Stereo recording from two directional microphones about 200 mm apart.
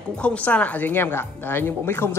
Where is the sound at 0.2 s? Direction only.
5° left (ahead or behind).